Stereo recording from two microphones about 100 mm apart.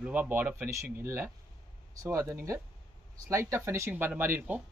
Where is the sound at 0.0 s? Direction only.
15° right (ahead or behind).